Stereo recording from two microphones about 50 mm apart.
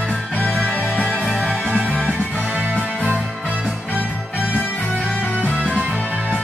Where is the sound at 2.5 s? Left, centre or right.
Right.